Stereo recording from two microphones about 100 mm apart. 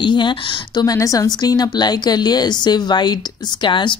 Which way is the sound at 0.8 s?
35° left (ahead or behind).